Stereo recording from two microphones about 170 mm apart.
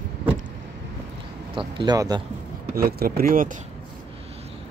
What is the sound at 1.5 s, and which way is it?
Speech, 30° right (ahead or behind).